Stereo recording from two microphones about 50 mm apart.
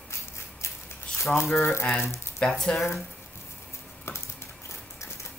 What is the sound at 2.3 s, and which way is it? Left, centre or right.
Speech, centre.